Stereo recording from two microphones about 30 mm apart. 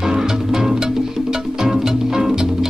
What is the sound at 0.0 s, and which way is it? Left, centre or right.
Music, centre.